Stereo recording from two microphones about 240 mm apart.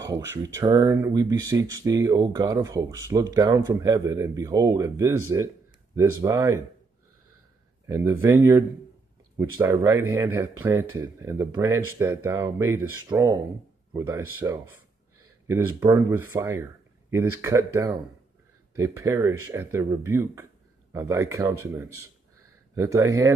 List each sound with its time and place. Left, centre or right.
0.4 s speech: centre
7.8 s speech: centre